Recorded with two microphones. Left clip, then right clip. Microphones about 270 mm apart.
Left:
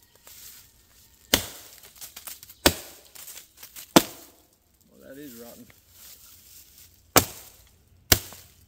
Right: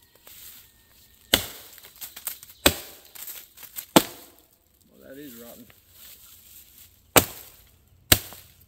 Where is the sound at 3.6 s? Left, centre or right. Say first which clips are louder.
Right 1 dB; right.